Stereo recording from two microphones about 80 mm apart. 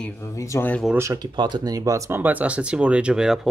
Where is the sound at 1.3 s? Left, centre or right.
Right.